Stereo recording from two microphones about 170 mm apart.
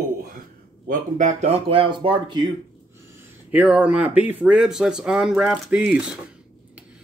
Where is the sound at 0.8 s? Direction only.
45° right (ahead or behind); by 2.4 s 30° right (ahead or behind).